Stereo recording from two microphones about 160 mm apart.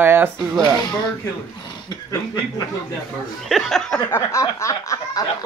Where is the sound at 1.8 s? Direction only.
25° left (ahead or behind).